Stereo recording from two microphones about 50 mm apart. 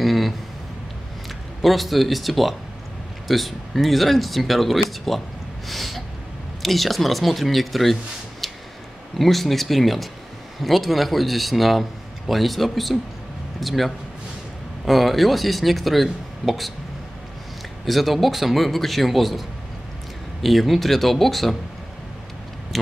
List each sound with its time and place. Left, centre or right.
0.0 s a sound: centre
1.6 s a man's voice: centre
5.7 s gasp: centre
6.6 s a man's voice: centre
17.8 s a man's voice: centre
20.4 s a man's voice: centre